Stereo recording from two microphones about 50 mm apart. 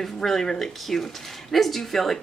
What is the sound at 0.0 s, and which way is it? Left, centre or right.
Speech, centre.